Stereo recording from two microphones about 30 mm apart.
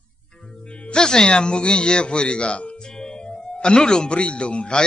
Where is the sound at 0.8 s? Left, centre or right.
Left.